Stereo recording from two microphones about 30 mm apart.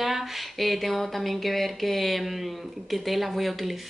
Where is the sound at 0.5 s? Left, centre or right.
Centre.